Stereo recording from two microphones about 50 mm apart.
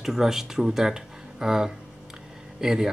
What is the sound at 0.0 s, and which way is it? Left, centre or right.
Speech, centre.